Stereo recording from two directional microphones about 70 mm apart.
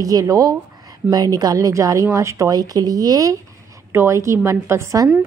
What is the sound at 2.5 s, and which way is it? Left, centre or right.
Speech, right.